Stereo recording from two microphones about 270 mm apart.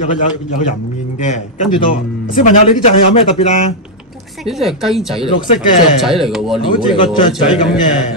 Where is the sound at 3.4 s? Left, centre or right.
Left.